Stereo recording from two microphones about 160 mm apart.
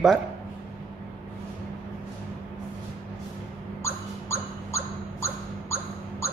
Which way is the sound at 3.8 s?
15° left (ahead or behind).